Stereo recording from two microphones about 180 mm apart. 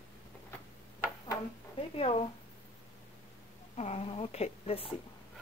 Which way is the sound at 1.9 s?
35° left (ahead or behind).